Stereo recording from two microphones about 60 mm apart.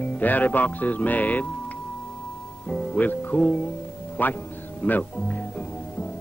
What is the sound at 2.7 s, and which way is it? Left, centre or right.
Speech, left.